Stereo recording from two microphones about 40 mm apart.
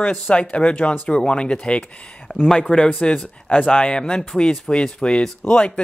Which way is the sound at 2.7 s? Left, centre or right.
Left.